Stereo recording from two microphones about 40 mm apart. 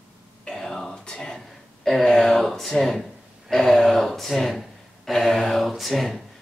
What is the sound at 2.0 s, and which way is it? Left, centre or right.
Speech, centre.